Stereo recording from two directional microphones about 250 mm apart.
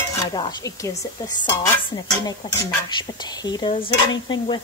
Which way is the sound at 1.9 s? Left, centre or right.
Centre.